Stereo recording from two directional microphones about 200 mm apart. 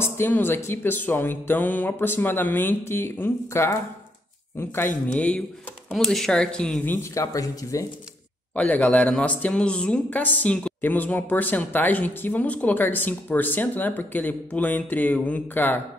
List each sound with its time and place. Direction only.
0.0 s a woman's voice: 10° left (ahead or behind)
7.0 s a woman's voice: 15° left (ahead or behind)